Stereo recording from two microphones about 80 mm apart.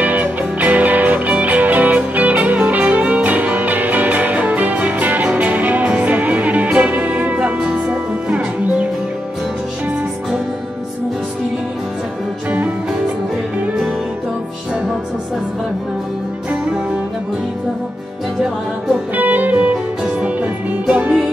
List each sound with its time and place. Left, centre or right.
0.0 s music: centre
12.4 s music: centre
19.1 s music: right